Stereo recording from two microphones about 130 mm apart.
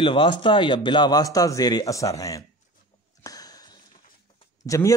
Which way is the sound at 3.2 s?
30° left (ahead or behind).